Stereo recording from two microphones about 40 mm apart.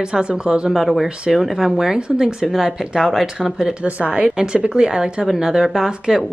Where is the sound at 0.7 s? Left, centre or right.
Centre.